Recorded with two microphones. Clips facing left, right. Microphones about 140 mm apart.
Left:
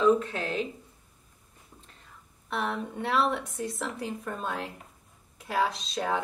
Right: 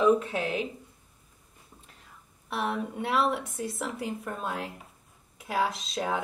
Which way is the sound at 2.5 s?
5° right (ahead or behind).